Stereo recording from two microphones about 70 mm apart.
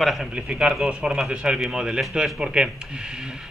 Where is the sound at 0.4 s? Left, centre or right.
Centre.